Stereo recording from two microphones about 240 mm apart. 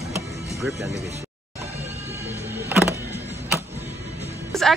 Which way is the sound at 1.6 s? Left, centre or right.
Centre.